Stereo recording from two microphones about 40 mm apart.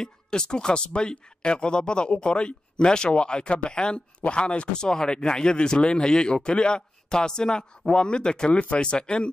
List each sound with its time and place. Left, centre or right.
0.0 s speech: centre
8.5 s speech: left